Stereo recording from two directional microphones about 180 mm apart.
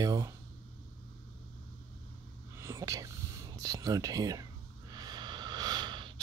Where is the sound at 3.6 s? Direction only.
20° right (ahead or behind).